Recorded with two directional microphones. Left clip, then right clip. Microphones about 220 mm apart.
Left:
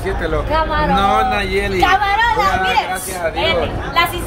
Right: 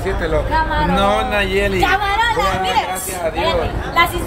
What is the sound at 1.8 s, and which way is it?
Speech, 15° left (ahead or behind).